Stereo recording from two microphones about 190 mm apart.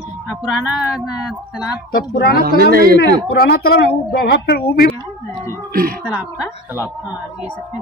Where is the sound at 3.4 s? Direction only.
55° left (ahead or behind).